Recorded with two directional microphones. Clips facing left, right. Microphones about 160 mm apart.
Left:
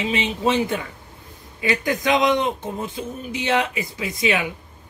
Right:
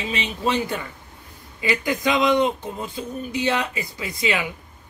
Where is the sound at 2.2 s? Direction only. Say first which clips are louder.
Right 1 dB; 20° left (ahead or behind).